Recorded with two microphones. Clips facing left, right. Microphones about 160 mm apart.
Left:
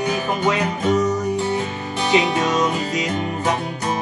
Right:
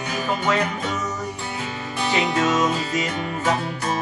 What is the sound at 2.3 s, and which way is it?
Music, 15° left (ahead or behind).